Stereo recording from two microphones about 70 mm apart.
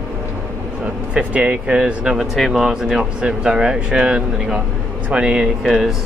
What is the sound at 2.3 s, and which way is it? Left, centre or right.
Speech, centre.